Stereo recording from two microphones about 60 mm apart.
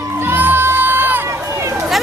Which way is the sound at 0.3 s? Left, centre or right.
Right.